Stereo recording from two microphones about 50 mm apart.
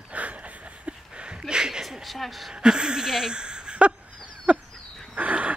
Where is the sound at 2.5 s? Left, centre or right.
Centre.